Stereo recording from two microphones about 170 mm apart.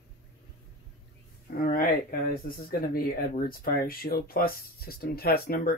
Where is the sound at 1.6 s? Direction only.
60° left (ahead or behind).